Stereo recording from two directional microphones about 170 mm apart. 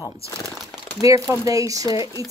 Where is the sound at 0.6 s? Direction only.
Centre (ahead or behind).